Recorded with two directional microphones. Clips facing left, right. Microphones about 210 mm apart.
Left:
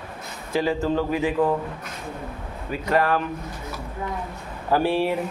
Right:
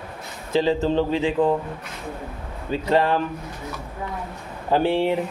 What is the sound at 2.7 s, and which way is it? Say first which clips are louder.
Speech: right 2 dB; 25° right (ahead or behind).